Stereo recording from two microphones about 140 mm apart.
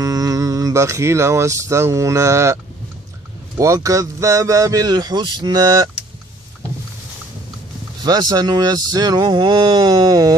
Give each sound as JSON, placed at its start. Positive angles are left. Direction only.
{"t": 0.0, "sound": "a man's voice", "side_deg": -25}
{"t": 8.0, "sound": "a man's voice", "side_deg": -30}